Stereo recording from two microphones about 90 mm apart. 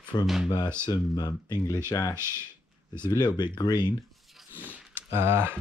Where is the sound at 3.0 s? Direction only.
55° left (ahead or behind).